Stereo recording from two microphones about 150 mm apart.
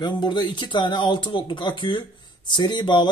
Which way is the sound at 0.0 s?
30° left (ahead or behind).